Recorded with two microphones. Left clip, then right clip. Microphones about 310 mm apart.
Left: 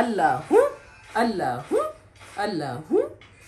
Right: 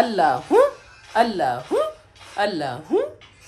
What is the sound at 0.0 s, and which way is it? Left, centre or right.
A woman's voice, right.